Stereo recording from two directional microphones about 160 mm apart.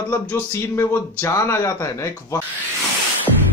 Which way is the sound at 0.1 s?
15° left (ahead or behind).